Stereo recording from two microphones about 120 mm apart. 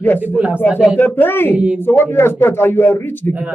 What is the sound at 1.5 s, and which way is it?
Speech, 10° right (ahead or behind).